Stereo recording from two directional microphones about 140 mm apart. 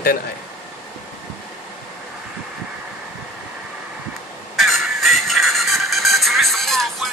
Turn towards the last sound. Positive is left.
turn(degrees=0)  # may be behind; listen again after turning